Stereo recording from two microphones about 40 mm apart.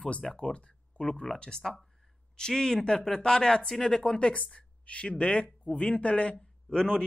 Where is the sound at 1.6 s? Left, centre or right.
Centre.